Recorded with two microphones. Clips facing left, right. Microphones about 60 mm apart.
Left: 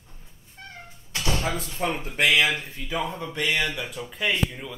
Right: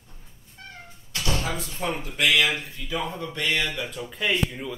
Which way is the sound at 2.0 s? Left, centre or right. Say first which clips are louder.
Left 1 dB; left.